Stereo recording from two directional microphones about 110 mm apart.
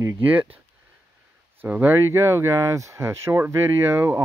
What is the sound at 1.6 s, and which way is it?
Speech, 15° right (ahead or behind).